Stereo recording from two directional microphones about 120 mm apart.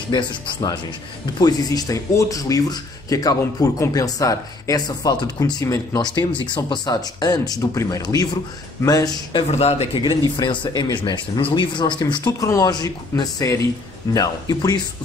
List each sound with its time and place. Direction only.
0.1 s speech: 40° left (ahead or behind)
1.4 s speech: 30° left (ahead or behind)
9.5 s speech: 55° left (ahead or behind)
10.0 s speech: 40° left (ahead or behind)